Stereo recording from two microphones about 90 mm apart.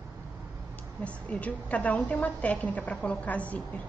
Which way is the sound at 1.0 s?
15° left (ahead or behind).